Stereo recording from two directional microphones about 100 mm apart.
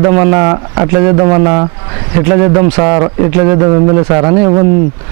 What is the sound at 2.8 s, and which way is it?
A man's voice, 30° right (ahead or behind).